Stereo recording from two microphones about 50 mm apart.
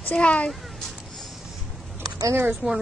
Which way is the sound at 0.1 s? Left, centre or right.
Left.